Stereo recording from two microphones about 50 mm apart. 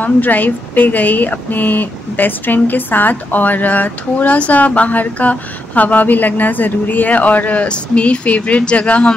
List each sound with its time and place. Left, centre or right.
0.0 s speech: left